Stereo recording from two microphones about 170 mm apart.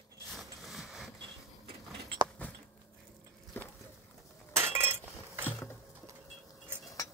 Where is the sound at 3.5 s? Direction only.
10° left (ahead or behind).